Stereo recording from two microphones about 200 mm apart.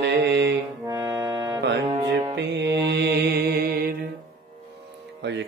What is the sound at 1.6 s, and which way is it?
Music, 60° right (ahead or behind).